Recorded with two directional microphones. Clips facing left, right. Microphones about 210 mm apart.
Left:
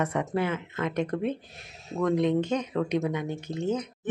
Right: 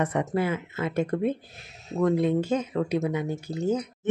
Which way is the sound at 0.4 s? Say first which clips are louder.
Right 1 dB; 10° right (ahead or behind).